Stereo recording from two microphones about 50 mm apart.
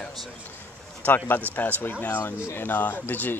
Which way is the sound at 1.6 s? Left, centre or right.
Left.